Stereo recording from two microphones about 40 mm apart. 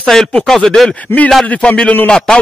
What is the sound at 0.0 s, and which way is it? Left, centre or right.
Speech, centre.